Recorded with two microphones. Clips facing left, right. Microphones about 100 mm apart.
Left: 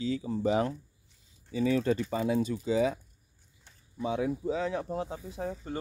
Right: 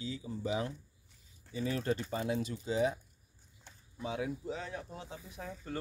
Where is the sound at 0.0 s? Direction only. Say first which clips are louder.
Left 9 dB; 85° left; by 0.7 s 65° left (ahead or behind).